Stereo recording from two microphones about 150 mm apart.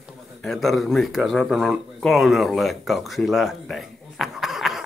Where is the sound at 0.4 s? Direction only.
Centre (ahead or behind).